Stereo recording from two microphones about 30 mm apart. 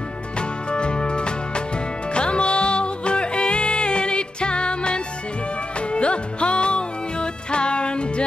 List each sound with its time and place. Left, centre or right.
0.7 s music: left